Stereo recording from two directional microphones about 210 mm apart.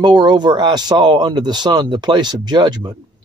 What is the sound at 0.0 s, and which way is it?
Speech, 20° right (ahead or behind).